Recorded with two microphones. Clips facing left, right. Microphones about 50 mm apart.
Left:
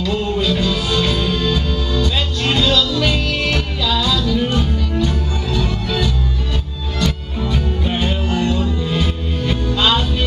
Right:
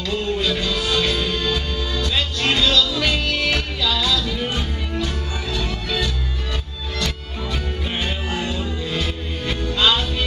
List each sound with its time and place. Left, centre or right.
0.0 s music: centre
8.3 s music: centre
8.5 s music: centre